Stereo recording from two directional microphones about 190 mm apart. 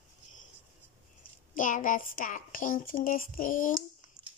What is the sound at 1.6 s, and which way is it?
A child's voice, 45° left (ahead or behind).